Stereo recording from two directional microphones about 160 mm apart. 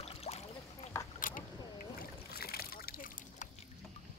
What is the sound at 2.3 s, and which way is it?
Slosh, 75° left (ahead or behind).